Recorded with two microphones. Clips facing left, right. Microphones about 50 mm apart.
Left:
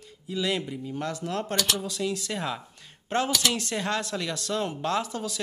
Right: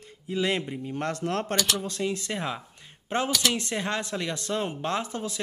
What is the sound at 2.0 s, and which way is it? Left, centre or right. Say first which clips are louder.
Speech: even; right.